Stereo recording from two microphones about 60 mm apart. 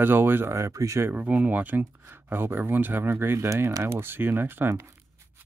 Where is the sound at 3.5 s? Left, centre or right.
Right.